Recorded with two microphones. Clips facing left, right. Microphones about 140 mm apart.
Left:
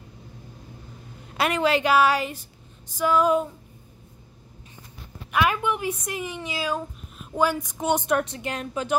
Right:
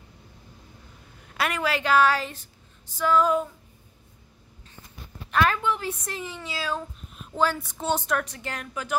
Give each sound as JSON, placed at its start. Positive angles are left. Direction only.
{"t": 1.3, "sound": "a woman's voice", "side_deg": 20}
{"t": 5.3, "sound": "a woman's voice", "side_deg": 15}